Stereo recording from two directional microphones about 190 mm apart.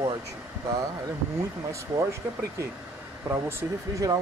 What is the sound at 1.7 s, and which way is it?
Speech, 15° right (ahead or behind).